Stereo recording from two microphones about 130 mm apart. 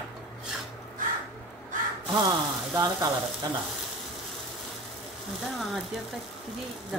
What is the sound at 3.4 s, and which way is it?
Frying, 30° right (ahead or behind).